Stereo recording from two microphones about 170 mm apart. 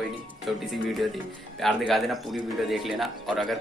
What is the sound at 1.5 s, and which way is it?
A man's voice, centre (ahead or behind).